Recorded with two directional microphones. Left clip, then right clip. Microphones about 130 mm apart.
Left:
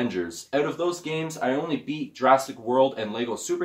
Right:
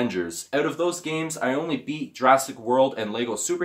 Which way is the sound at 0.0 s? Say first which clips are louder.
Right 2 dB; 45° right (ahead or behind).